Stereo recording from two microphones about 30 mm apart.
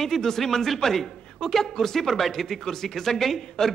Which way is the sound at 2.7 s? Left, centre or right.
Centre.